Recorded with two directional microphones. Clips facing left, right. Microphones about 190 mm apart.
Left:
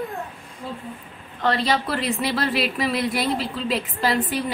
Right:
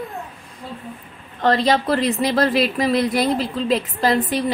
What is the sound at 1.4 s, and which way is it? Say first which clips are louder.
Speech: right 5 dB; 40° right (ahead or behind).